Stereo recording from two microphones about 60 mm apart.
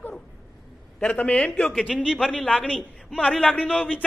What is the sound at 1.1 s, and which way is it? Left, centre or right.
A woman's voice, left.